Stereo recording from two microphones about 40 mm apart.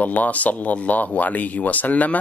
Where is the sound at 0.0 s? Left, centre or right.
Left.